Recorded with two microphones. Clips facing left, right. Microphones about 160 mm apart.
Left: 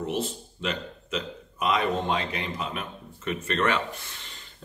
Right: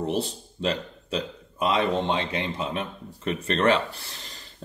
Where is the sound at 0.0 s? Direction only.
35° right (ahead or behind).